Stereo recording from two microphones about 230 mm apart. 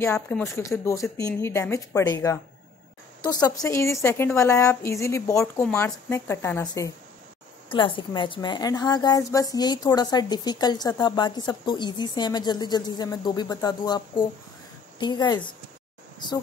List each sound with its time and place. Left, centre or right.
0.0 s a woman's voice: centre